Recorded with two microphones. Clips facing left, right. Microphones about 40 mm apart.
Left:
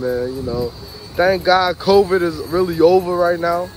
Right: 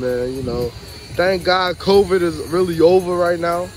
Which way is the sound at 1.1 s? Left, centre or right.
Centre.